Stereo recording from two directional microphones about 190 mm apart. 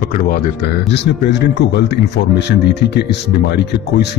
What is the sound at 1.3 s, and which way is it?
Speech, 65° left (ahead or behind).